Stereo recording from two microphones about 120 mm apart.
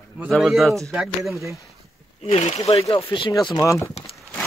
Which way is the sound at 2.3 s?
65° left (ahead or behind).